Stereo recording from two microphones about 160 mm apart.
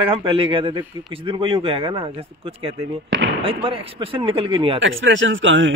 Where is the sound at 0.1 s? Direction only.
35° right (ahead or behind).